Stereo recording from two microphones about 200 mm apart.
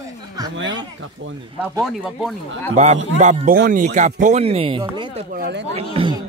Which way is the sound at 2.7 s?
35° right (ahead or behind).